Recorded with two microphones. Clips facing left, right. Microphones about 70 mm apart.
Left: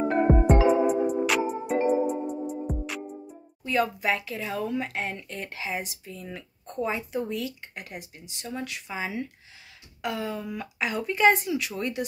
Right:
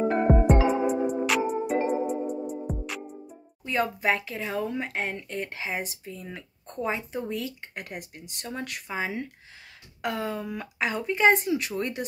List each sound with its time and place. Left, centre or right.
0.0 s music: centre
3.6 s a woman's voice: right
6.2 s speech: centre
7.2 s a woman's voice: right
8.8 s a woman's voice: right
11.3 s a woman's voice: right